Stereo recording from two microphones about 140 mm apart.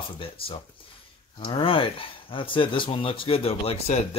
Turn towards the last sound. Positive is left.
turn(degrees=45)  # may be behind; listen again after turning